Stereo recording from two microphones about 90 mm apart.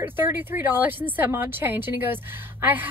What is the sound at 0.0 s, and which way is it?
Speech, 20° right (ahead or behind).